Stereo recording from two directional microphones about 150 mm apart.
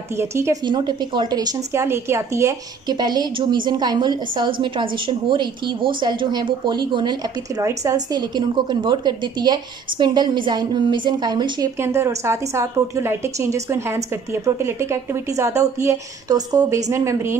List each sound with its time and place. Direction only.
0.2 s a woman's voice: 20° right (ahead or behind)
0.7 s a woman's voice: 30° right (ahead or behind)
11.8 s a woman's voice: 20° right (ahead or behind)